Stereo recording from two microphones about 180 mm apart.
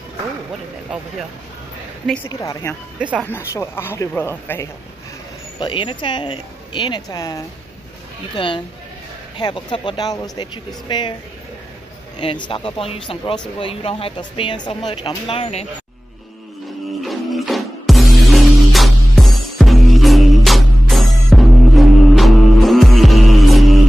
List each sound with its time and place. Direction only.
2.2 s a woman's voice: 15° left (ahead or behind)
5.6 s speech: 25° left (ahead or behind)
12.2 s speech: 25° left (ahead or behind)
17.0 s music: centre (ahead or behind)